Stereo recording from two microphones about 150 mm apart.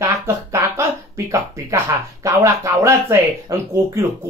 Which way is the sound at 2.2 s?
20° right (ahead or behind).